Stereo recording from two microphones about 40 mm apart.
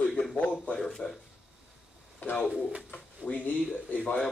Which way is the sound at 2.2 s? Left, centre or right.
Left.